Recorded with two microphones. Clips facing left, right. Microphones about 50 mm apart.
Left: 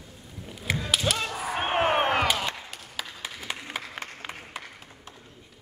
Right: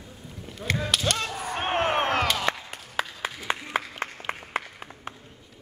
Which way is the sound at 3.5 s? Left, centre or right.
Right.